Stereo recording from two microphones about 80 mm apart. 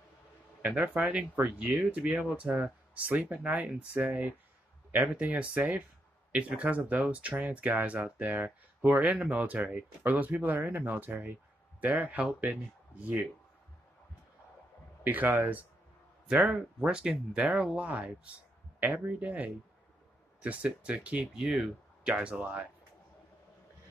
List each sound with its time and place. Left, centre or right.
0.6 s speech: centre
15.0 s speech: right
16.3 s speech: centre